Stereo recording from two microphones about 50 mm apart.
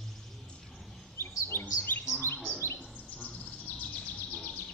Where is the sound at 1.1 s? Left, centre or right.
Left.